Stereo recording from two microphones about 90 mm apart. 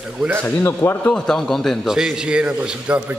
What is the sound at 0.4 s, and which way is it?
Speech, 25° left (ahead or behind).